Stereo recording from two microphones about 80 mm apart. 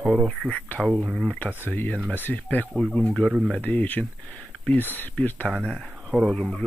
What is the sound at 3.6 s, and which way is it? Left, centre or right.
Speech, left.